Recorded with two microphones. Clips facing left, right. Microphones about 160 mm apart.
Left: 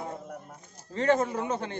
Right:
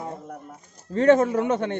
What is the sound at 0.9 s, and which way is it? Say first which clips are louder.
Speech: right 8 dB; 55° right (ahead or behind).